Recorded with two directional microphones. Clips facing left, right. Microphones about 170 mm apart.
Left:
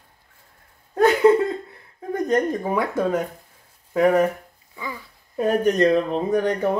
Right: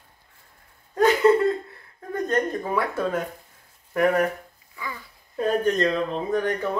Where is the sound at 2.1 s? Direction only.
15° left (ahead or behind).